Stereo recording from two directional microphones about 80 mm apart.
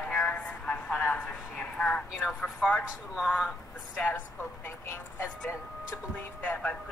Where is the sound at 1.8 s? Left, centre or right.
Centre.